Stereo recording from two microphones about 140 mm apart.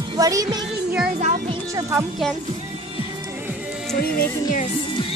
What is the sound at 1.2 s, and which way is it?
Music, 50° right (ahead or behind).